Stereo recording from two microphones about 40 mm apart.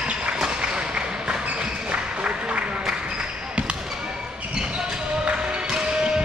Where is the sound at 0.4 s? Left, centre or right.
Right.